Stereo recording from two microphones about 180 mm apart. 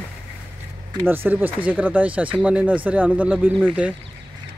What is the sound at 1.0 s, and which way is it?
Speech, 10° right (ahead or behind).